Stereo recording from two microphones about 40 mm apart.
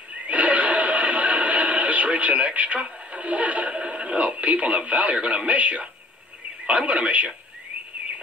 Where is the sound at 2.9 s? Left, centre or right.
Right.